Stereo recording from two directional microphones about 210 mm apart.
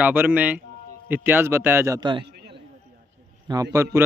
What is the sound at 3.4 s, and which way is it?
Speech, 15° right (ahead or behind).